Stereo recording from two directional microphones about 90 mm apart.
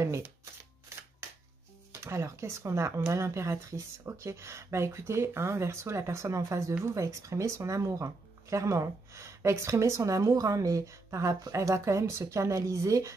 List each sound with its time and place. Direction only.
0.0 s shuffling cards: 30° right (ahead or behind)
1.9 s speech: 30° right (ahead or behind)